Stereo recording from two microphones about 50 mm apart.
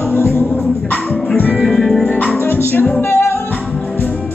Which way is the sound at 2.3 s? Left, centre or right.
Left.